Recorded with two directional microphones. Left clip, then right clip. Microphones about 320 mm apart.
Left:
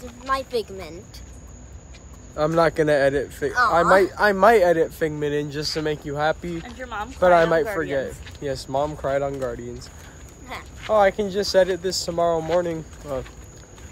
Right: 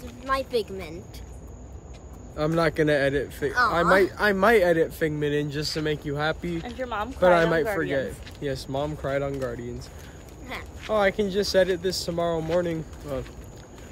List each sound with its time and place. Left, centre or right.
0.3 s speech: centre
2.3 s speech: centre
6.8 s speech: right
7.2 s speech: centre